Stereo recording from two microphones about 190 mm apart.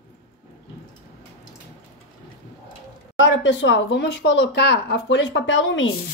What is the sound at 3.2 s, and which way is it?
Speech, 80° left.